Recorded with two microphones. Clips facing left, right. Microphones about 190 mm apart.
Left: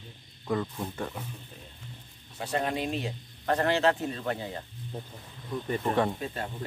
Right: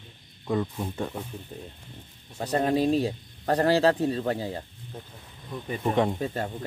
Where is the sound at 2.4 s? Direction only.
40° right (ahead or behind).